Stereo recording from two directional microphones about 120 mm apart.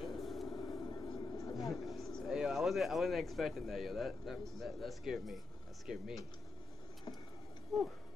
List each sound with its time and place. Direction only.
0.0 s vehicle: centre (ahead or behind)
0.5 s vehicle: 30° left (ahead or behind)
1.6 s speech: centre (ahead or behind)